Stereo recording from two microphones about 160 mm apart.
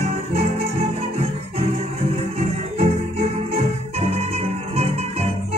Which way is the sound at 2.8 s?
40° right (ahead or behind).